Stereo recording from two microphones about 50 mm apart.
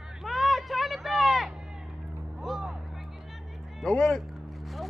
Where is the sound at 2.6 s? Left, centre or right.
Centre.